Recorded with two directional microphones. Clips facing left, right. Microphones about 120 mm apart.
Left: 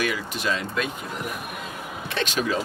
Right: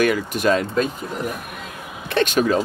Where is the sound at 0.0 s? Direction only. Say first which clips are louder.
Right 8 dB; 50° right (ahead or behind).